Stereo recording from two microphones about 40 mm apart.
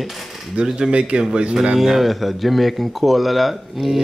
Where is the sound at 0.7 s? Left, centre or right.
Centre.